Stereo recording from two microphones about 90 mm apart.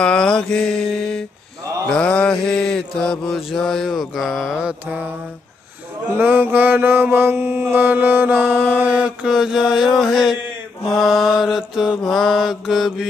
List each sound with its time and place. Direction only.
0.0 s mantra: 10° left (ahead or behind)